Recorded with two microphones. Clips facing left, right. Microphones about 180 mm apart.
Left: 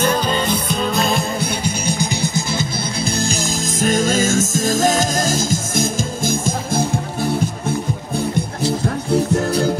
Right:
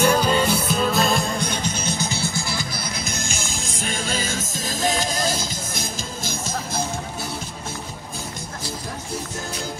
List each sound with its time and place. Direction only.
0.0 s music: 10° right (ahead or behind); by 2.6 s 20° left (ahead or behind)
3.1 s music: 35° left (ahead or behind)
8.8 s music: 65° left (ahead or behind)